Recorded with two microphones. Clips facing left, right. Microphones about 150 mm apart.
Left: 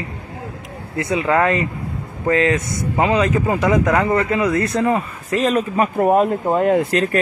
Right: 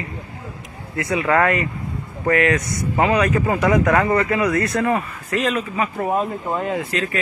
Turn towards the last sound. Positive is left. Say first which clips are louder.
# left 7 dB
turn(degrees=50)  # may be behind; listen again after turning